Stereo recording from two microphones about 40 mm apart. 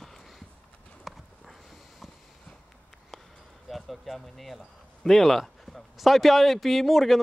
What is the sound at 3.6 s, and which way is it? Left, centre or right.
Speech, centre.